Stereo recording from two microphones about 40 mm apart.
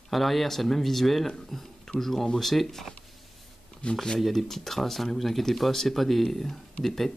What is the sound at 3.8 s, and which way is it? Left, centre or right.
Speech, centre.